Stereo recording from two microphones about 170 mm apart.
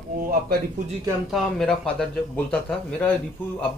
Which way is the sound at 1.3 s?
Centre (ahead or behind).